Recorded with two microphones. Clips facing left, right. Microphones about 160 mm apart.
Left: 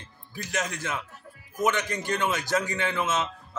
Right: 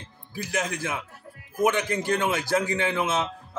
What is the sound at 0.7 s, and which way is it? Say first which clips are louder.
A man's voice: right 2 dB; 10° right (ahead or behind).